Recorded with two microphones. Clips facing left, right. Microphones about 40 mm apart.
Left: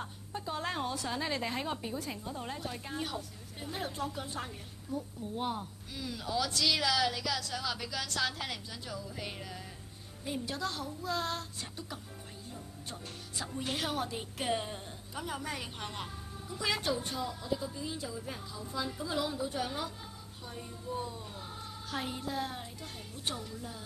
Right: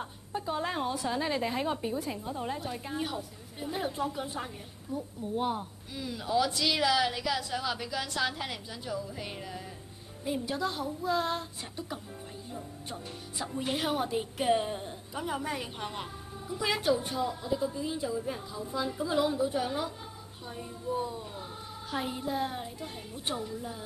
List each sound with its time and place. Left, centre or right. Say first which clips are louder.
0.0 s a woman's voice: right 4 dB; centre
12.5 s speech: right 5 dB; centre